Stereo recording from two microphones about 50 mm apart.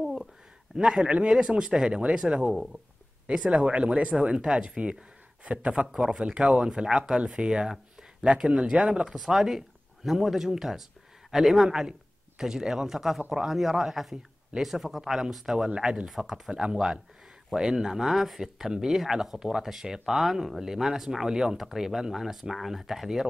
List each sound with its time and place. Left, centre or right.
0.0 s a sound: centre
0.7 s speech: centre
2.5 s a man's voice: centre
3.3 s speech: right
9.1 s a man's voice: centre
15.7 s speech: centre
16.1 s speech: centre